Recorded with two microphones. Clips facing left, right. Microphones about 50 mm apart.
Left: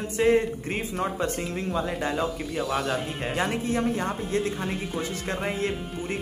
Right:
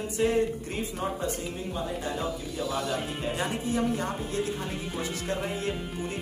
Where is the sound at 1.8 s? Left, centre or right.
Left.